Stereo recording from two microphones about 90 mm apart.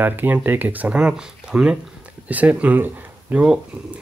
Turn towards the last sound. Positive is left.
turn(degrees=-15)  # may be behind; listen again after turning